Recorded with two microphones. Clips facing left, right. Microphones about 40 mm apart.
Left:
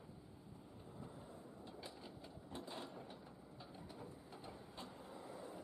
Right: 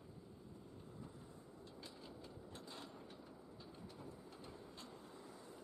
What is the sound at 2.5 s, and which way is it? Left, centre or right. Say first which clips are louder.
Mechanisms: left 6 dB; centre.